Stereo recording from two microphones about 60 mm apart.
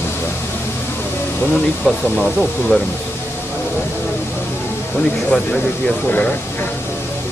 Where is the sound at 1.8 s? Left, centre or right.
Centre.